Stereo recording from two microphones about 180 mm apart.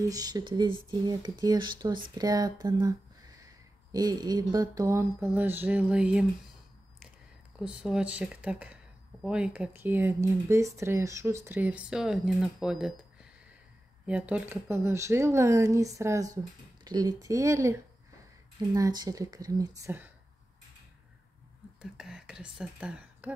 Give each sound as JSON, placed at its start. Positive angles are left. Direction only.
{"t": 0.0, "sound": "speech", "side_deg": -20}
{"t": 3.9, "sound": "speech", "side_deg": -20}
{"t": 7.6, "sound": "speech", "side_deg": -5}
{"t": 21.9, "sound": "speech", "side_deg": -5}